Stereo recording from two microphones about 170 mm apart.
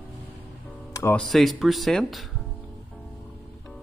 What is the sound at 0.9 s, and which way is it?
Music, 15° left (ahead or behind).